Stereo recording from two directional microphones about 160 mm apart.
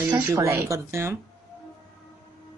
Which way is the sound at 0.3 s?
15° right (ahead or behind).